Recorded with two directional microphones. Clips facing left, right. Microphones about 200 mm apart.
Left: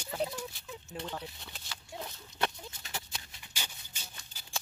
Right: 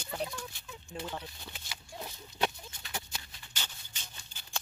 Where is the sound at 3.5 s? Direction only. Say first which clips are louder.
Left 1 dB; 10° left (ahead or behind).